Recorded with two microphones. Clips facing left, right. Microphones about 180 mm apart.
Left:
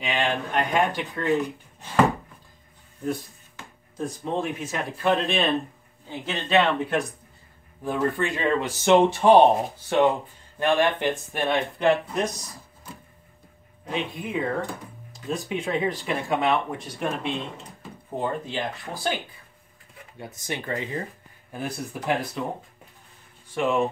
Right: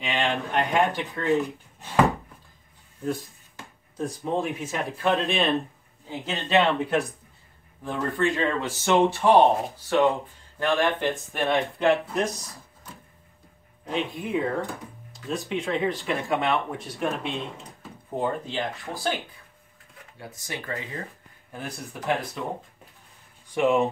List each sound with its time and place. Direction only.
0.0 s speech: centre (ahead or behind)
4.4 s speech: centre (ahead or behind); by 11.1 s 15° left (ahead or behind)
11.1 s speech: centre (ahead or behind)
13.8 s speech: centre (ahead or behind)
20.2 s speech: 20° left (ahead or behind)
21.5 s speech: centre (ahead or behind)
23.5 s speech: 15° right (ahead or behind)